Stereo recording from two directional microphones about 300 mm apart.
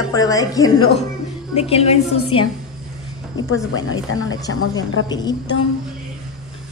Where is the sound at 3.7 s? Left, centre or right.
Left.